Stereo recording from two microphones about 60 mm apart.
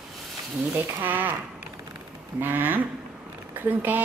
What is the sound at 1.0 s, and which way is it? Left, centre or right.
Speech, right.